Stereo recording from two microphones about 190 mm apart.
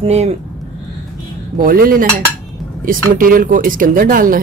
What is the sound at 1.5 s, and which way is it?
Speech, 50° right (ahead or behind).